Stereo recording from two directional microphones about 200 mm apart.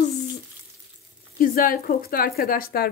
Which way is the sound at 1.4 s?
45° left (ahead or behind).